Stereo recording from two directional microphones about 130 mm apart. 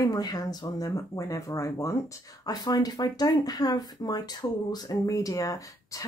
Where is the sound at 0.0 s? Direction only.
30° left (ahead or behind).